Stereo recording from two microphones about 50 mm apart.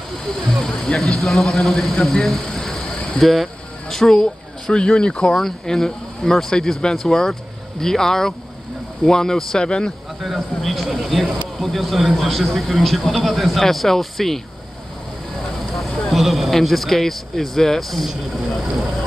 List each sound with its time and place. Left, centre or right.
0.7 s speech: centre
0.9 s speech: centre
2.0 s vehicle: centre
3.9 s speech: centre
5.3 s speech: centre
10.6 s speech: centre
15.7 s speech: centre